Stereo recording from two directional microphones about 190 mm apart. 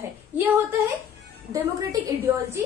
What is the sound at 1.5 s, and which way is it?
A woman's voice, 15° right (ahead or behind).